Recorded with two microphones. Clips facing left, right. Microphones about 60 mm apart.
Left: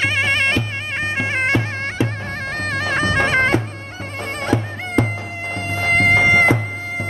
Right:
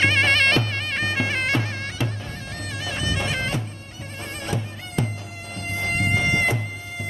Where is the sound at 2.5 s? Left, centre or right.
Left.